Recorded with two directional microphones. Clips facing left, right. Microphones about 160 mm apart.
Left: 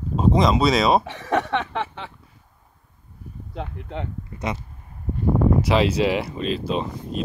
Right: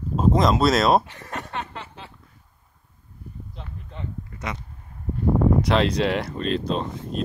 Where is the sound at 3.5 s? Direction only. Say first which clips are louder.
Left 13 dB; 70° left (ahead or behind).